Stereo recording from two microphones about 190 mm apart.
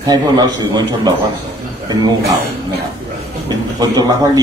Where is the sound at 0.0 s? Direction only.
20° right (ahead or behind).